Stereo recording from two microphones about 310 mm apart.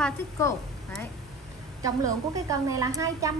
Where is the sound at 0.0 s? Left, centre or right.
Centre.